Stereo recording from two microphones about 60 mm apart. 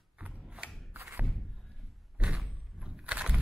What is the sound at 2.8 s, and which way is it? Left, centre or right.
Vehicle, centre.